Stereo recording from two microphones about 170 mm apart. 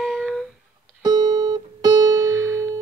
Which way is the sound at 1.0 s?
25° right (ahead or behind).